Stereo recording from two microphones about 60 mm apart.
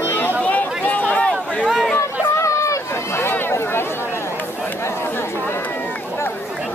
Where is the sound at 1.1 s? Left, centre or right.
Centre.